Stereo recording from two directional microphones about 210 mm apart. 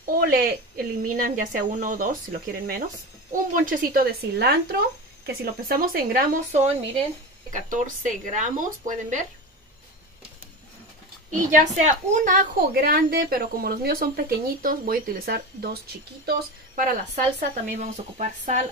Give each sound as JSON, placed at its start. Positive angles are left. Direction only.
{"t": 0.0, "sound": "speech", "side_deg": -45}
{"t": 3.3, "sound": "a woman's voice", "side_deg": -40}
{"t": 11.3, "sound": "a woman's voice", "side_deg": -35}